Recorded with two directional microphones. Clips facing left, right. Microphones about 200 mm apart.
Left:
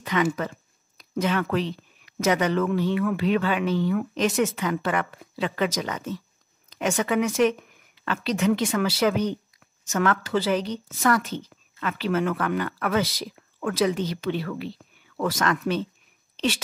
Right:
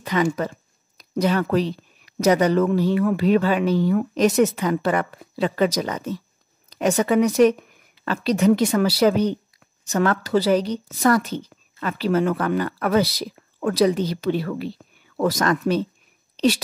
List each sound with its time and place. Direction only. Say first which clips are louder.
0.0 s speech: right 3 dB; 40° right (ahead or behind)